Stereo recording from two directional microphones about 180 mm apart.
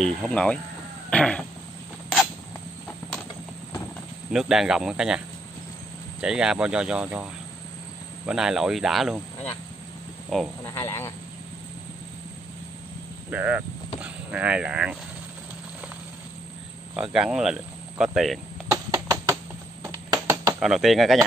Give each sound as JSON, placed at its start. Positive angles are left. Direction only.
{"t": 0.0, "sound": "speech", "side_deg": 5}
{"t": 4.3, "sound": "speech", "side_deg": -5}
{"t": 6.2, "sound": "speech", "side_deg": -5}
{"t": 8.3, "sound": "speech", "side_deg": -5}
{"t": 10.6, "sound": "speech", "side_deg": 15}
{"t": 13.3, "sound": "speech", "side_deg": -10}
{"t": 16.9, "sound": "speech", "side_deg": -5}
{"t": 18.9, "sound": "music", "side_deg": -20}
{"t": 19.8, "sound": "a sound", "side_deg": -20}
{"t": 20.6, "sound": "speech", "side_deg": 0}